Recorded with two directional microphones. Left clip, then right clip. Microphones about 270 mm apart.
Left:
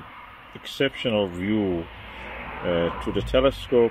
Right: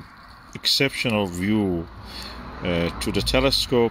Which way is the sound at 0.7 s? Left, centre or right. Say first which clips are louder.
Right 4 dB; centre.